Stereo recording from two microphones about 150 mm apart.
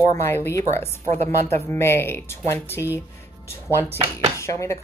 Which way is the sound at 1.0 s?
45° right (ahead or behind).